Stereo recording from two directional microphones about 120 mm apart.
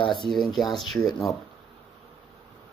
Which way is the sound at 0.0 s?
40° left (ahead or behind).